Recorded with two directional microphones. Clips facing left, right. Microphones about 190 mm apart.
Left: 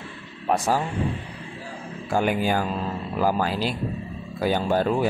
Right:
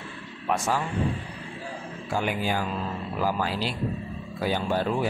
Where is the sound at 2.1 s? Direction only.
50° left (ahead or behind).